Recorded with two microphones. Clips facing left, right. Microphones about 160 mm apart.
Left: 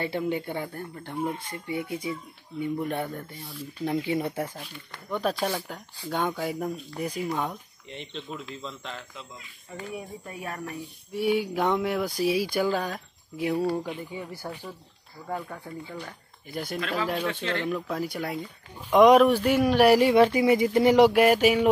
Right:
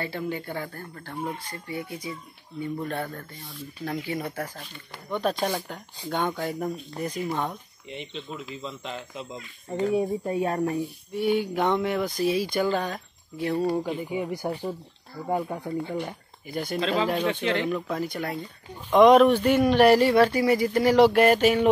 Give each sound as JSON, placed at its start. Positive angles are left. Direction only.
{"t": 0.0, "sound": "speech", "side_deg": 20}
{"t": 5.2, "sound": "speech", "side_deg": 5}
{"t": 7.9, "sound": "speech", "side_deg": -10}
{"t": 11.1, "sound": "speech", "side_deg": 5}
{"t": 14.1, "sound": "speech", "side_deg": -15}
{"t": 16.4, "sound": "speech", "side_deg": 0}
{"t": 16.8, "sound": "speech", "side_deg": -25}
{"t": 17.6, "sound": "speech", "side_deg": 0}